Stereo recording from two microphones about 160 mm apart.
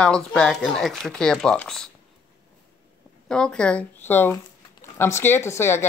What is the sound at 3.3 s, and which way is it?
Speech, 5° left (ahead or behind).